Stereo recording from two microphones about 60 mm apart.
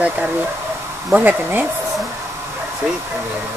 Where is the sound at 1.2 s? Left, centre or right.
Right.